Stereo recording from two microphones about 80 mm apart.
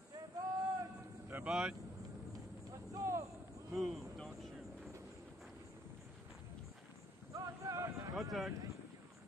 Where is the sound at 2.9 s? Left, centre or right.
Right.